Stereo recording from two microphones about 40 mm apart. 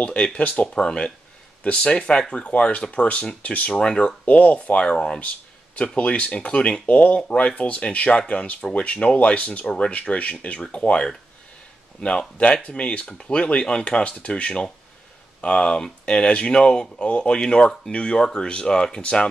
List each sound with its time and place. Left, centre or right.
0.0 s speech: left
0.4 s speech: left
0.7 s speech: left
3.7 s speech: left
4.3 s speech: left